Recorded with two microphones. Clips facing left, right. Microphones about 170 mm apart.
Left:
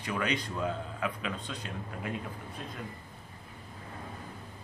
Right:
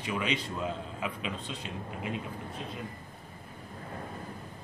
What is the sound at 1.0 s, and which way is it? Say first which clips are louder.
Speech: left 1 dB; 25° right (ahead or behind).